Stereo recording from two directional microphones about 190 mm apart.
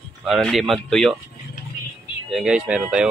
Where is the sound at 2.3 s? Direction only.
5° right (ahead or behind).